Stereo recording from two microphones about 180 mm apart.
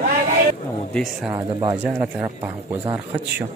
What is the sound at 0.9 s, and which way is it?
Speech, centre (ahead or behind).